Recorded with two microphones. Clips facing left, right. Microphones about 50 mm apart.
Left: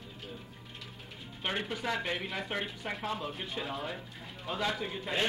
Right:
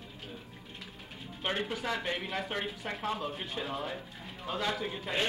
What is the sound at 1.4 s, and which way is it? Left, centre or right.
A man's voice, centre.